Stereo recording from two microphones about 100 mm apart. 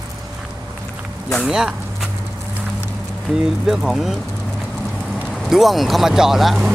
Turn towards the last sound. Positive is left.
turn(degrees=-5)  # may be behind; listen again after turning